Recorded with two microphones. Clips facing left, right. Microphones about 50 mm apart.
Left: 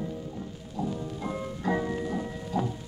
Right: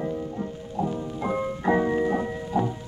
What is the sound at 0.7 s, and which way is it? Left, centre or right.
Music, right.